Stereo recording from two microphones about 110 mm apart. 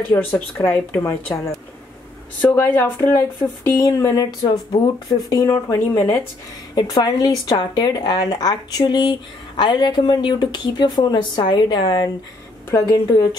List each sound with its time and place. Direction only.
0.1 s speech: 35° left (ahead or behind)
2.5 s a woman's voice: 20° left (ahead or behind)
3.1 s speech: 30° left (ahead or behind)
5.3 s speech: 25° left (ahead or behind)
6.7 s speech: 35° left (ahead or behind)
12.7 s speech: 30° left (ahead or behind)